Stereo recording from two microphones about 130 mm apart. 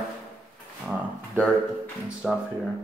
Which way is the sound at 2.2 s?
5° left (ahead or behind).